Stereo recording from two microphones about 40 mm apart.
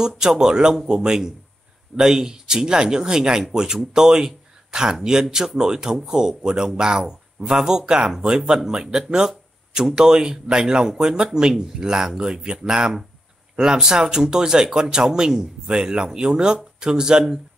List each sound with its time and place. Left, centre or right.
0.0 s speech: centre